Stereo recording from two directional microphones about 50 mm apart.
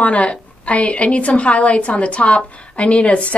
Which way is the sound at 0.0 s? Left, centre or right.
Left.